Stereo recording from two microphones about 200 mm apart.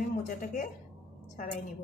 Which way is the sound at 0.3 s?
40° left (ahead or behind).